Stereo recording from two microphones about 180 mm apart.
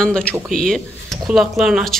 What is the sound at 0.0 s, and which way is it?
Speech, 5° left (ahead or behind).